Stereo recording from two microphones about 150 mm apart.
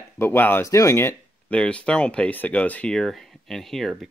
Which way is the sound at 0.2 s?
15° left (ahead or behind).